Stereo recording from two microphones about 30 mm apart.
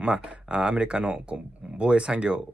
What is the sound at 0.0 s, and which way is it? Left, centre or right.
Speech, right.